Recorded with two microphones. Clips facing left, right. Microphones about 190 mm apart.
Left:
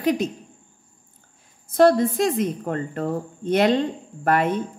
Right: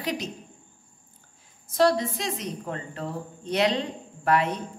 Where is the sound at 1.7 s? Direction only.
50° left (ahead or behind).